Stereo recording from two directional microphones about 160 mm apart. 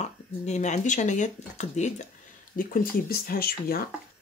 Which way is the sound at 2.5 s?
60° left (ahead or behind).